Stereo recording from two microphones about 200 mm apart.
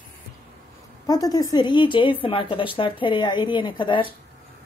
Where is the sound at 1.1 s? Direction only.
20° left (ahead or behind).